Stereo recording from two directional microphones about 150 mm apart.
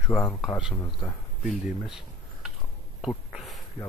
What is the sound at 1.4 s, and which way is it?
Speech, 5° right (ahead or behind).